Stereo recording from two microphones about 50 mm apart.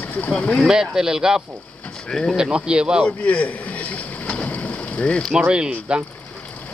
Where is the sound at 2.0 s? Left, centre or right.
Centre.